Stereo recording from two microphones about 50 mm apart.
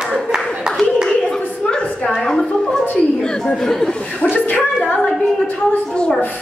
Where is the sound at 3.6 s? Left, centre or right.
Centre.